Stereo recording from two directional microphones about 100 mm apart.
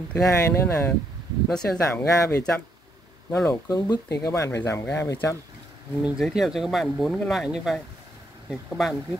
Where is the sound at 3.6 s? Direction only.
40° left (ahead or behind).